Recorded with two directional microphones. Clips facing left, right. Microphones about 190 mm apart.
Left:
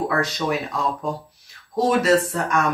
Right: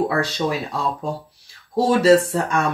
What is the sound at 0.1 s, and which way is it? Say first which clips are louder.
Speech: right 1 dB; 30° right (ahead or behind).